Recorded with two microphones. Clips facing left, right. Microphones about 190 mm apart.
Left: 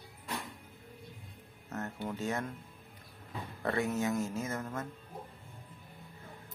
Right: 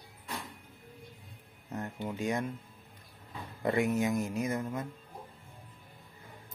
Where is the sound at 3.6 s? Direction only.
15° right (ahead or behind).